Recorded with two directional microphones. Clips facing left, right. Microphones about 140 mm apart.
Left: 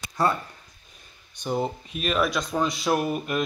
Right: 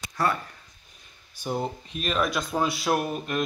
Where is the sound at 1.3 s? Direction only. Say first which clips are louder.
Left 2 dB; centre (ahead or behind).